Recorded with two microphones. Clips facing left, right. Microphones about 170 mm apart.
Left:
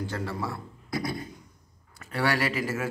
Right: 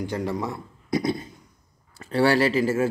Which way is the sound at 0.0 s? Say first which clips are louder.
Right 5 dB; 15° right (ahead or behind).